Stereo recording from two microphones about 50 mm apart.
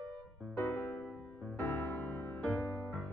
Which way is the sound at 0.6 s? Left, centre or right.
Left.